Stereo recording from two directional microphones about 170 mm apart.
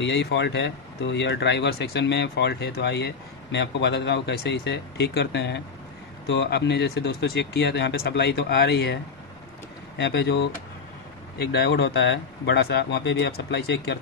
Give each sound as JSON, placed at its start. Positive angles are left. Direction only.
{"t": 0.0, "sound": "speech", "side_deg": 90}
{"t": 6.2, "sound": "speech", "side_deg": 75}
{"t": 9.9, "sound": "speech", "side_deg": 90}
{"t": 11.5, "sound": "speech", "side_deg": 85}